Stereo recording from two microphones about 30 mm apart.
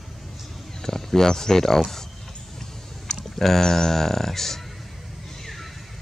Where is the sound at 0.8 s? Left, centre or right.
Centre.